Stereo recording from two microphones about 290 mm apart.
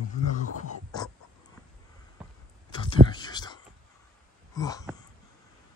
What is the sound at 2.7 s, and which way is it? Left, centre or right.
Whispering, centre.